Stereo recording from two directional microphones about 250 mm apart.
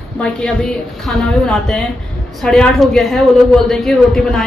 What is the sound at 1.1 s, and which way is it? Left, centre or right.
A woman's voice, centre.